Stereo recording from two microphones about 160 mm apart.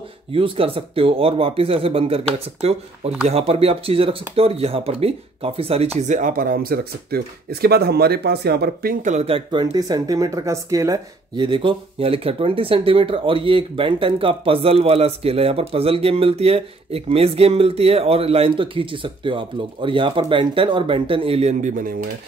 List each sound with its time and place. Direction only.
0.3 s speech: 35° right (ahead or behind); by 8.9 s 85° right
9.0 s speech: 40° right (ahead or behind)